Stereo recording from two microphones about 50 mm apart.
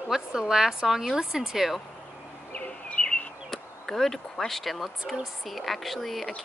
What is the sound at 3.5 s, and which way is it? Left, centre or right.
Speech, centre.